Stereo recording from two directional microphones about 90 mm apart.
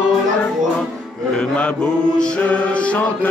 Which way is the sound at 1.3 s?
15° left (ahead or behind).